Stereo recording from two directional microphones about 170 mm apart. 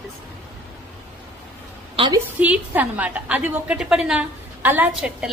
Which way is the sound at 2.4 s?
10° right (ahead or behind).